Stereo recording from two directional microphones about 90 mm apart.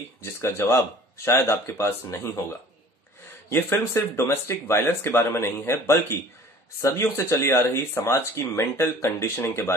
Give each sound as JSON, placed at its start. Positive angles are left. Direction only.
{"t": 0.2, "sound": "speech", "side_deg": 30}
{"t": 3.4, "sound": "speech", "side_deg": 30}